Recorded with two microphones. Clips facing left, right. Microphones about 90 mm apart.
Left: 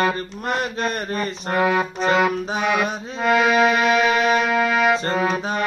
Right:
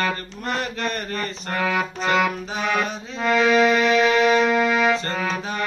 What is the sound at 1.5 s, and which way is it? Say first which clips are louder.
Music: left 4 dB; 20° left (ahead or behind).